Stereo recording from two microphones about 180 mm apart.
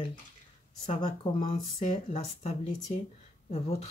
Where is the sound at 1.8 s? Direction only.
40° left (ahead or behind).